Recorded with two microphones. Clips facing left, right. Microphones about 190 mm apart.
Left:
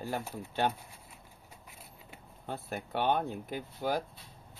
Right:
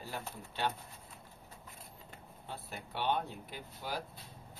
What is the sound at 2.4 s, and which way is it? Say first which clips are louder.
Speech: left 8 dB; 50° left (ahead or behind).